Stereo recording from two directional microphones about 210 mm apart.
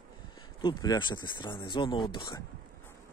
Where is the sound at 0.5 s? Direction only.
20° left (ahead or behind).